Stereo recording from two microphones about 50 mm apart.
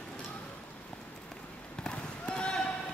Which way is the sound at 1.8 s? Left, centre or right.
Centre.